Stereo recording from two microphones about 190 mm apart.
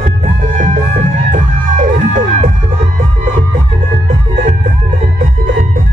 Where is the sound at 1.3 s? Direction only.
40° right (ahead or behind).